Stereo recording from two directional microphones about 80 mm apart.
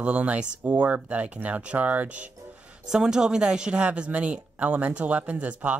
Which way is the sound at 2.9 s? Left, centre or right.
Centre.